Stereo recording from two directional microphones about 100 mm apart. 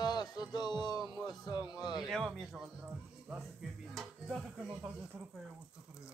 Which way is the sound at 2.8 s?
15° right (ahead or behind).